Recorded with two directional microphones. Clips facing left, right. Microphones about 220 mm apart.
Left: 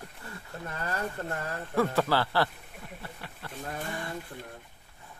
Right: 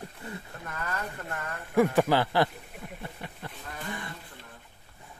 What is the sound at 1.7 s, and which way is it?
Speech, 15° right (ahead or behind).